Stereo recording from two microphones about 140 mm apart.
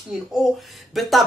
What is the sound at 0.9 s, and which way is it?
Speech, centre (ahead or behind).